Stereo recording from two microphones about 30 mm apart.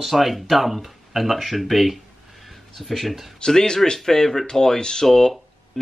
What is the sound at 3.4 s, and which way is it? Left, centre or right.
Speech, left.